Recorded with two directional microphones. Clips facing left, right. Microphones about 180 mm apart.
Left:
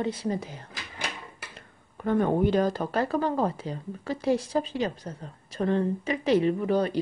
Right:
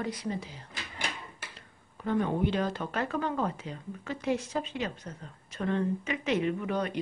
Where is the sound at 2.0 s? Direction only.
50° left (ahead or behind).